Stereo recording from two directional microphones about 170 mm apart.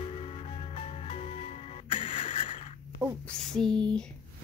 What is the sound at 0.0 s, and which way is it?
Music, 35° left (ahead or behind).